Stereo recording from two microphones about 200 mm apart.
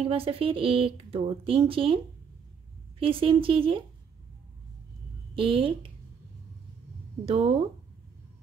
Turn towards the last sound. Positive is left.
turn(degrees=-30)  # may be behind; listen again after turning